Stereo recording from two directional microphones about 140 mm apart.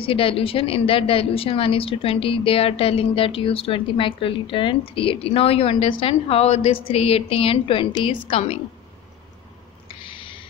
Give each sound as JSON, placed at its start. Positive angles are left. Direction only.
{"t": 0.0, "sound": "a woman's voice", "side_deg": 40}
{"t": 9.8, "sound": "owl", "side_deg": 40}